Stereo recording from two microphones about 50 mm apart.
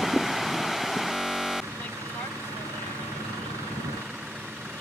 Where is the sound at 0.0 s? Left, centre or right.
Centre.